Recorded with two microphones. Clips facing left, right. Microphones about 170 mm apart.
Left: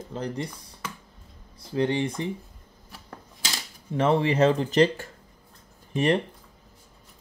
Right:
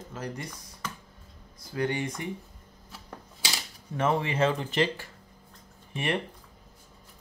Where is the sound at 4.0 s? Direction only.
30° left (ahead or behind).